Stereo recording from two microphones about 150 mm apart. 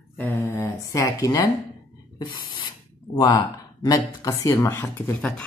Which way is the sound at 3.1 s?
30° left (ahead or behind).